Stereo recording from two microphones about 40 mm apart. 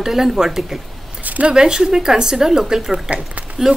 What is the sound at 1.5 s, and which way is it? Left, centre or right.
Speech, centre.